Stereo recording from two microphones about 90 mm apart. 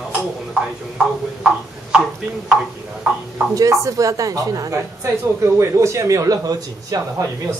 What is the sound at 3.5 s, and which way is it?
A woman's voice, 40° right (ahead or behind).